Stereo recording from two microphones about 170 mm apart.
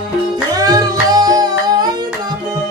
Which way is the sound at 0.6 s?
20° right (ahead or behind).